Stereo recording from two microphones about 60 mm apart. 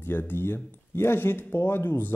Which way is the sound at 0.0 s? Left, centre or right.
Left.